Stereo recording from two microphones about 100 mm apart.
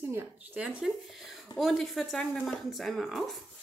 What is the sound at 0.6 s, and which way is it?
Speech, 10° right (ahead or behind).